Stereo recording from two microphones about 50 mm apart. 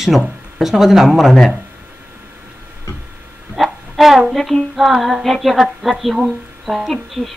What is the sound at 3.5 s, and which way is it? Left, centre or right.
Speech, centre.